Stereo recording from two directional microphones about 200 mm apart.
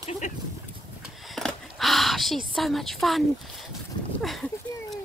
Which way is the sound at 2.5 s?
Centre (ahead or behind).